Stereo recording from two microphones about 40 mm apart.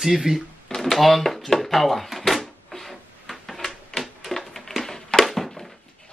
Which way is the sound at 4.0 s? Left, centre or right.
Centre.